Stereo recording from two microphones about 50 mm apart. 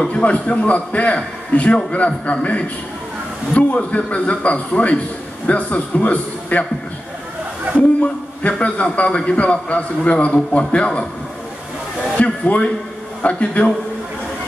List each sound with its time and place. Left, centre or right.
0.1 s a man's voice: left
8.0 s a man's voice: left
12.2 s a man's voice: left